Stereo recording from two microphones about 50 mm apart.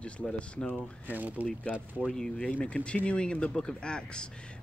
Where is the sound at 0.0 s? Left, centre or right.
Left.